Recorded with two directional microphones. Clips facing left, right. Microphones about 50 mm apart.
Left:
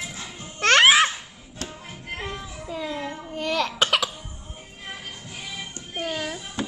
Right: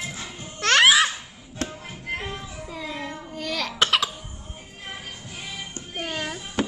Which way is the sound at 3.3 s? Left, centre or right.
Left.